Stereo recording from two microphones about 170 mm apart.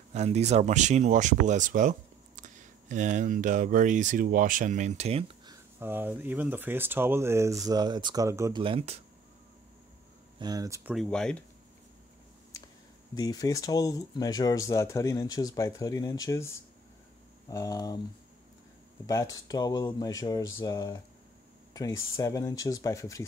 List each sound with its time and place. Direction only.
0.1 s speech: 40° right (ahead or behind)
5.5 s speech: 15° right (ahead or behind)
8.5 s speech: 30° right (ahead or behind)
10.4 s speech: 20° right (ahead or behind)
11.1 s speech: 5° left (ahead or behind)
13.1 s speech: 20° left (ahead or behind)
19.0 s speech: 20° left (ahead or behind)